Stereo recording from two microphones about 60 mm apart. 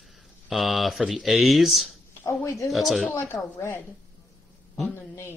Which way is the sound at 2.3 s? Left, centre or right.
Left.